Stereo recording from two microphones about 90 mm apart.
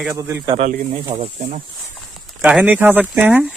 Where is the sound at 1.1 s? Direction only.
80° right.